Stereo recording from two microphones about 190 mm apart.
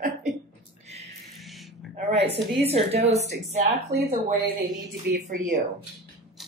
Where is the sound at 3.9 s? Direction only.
55° right (ahead or behind).